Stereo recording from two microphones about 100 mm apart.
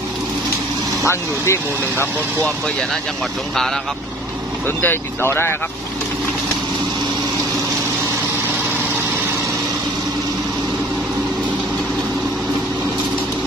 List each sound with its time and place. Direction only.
1.0 s speech: 25° left (ahead or behind)
4.6 s speech: 20° left (ahead or behind)